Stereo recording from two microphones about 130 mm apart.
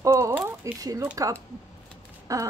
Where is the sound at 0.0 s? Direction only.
20° right (ahead or behind).